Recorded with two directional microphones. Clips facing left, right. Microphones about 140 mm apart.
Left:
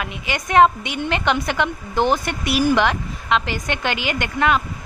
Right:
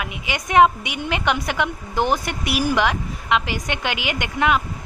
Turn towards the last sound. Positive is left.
turn(degrees=-15)  # may be behind; listen again after turning